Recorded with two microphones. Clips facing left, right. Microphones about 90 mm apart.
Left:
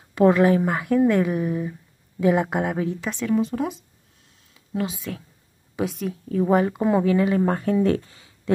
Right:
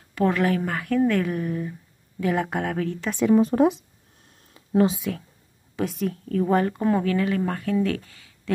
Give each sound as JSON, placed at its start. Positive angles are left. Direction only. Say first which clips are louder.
{"t": 0.1, "sound": "speech", "louder": "left 5 dB", "side_deg": 20}
{"t": 3.3, "sound": "speech", "louder": "right 6 dB", "side_deg": -45}
{"t": 4.4, "sound": "a sound", "louder": "right 7 dB", "side_deg": -45}
{"t": 5.1, "sound": "speech", "louder": "right 3 dB", "side_deg": 0}